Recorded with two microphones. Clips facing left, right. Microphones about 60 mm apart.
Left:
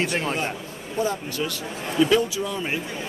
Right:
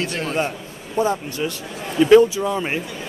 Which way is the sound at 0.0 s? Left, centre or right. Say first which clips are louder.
Even; left.